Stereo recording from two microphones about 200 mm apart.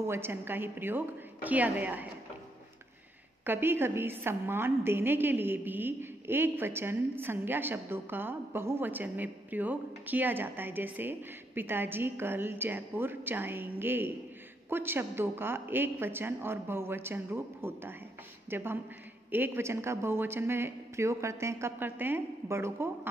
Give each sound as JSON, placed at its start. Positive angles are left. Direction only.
{"t": 0.1, "sound": "a woman's voice", "side_deg": -10}
{"t": 3.4, "sound": "a woman's voice", "side_deg": -10}